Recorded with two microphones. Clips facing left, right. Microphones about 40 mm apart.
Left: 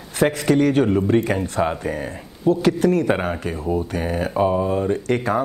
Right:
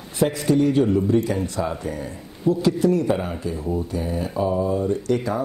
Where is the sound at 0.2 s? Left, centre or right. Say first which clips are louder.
Left 2 dB; left.